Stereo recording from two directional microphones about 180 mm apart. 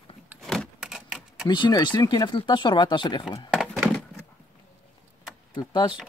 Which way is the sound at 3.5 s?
Centre (ahead or behind).